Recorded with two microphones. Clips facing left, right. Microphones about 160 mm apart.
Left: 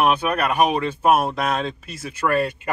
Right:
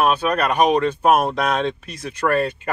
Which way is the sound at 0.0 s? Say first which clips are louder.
Right 1 dB; 15° left (ahead or behind).